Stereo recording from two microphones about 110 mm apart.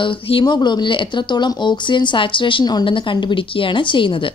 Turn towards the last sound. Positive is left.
turn(degrees=50)  # may be behind; listen again after turning